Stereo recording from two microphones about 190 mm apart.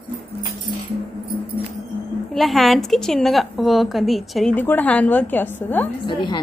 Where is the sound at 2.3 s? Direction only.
Centre (ahead or behind).